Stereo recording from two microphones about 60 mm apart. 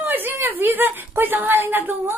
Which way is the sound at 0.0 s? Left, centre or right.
Right.